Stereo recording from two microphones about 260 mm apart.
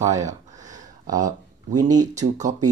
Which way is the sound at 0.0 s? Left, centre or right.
Right.